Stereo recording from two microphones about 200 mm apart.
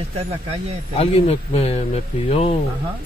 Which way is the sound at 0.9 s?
30° left (ahead or behind).